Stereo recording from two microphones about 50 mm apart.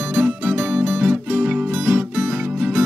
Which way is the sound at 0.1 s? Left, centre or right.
Centre.